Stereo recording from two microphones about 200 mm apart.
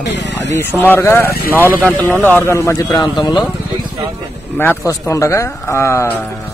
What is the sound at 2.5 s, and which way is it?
Speech, 15° left (ahead or behind).